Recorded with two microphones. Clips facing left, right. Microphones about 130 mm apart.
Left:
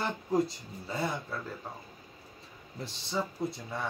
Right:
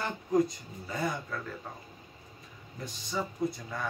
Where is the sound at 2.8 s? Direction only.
25° left (ahead or behind).